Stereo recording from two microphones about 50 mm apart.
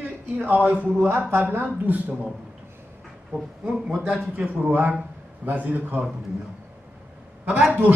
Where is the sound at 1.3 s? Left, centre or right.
Right.